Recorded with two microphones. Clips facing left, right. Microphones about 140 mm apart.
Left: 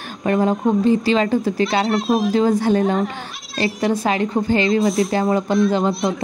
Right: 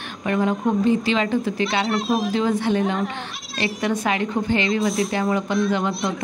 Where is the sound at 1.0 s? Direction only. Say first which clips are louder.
Left 4 dB; 45° left (ahead or behind).